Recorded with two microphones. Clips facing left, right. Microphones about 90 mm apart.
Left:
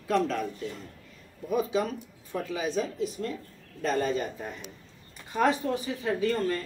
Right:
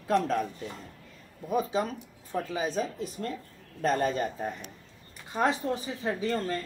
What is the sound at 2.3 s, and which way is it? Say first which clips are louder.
Speech: even; 35° right (ahead or behind).